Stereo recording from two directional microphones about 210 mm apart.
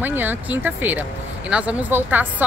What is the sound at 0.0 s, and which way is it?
A woman's voice, 10° right (ahead or behind).